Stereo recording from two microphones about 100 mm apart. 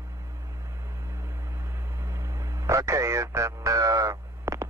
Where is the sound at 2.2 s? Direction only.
30° right (ahead or behind).